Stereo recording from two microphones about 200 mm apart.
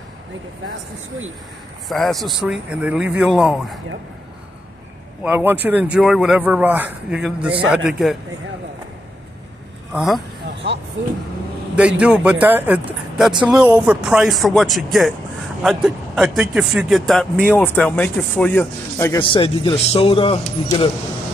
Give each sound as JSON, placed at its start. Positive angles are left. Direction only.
{"t": 1.9, "sound": "speech", "side_deg": 0}
{"t": 5.2, "sound": "a man's voice", "side_deg": -10}
{"t": 9.9, "sound": "speech", "side_deg": 0}
{"t": 11.7, "sound": "a man's voice", "side_deg": -5}
{"t": 19.1, "sound": "speech", "side_deg": 25}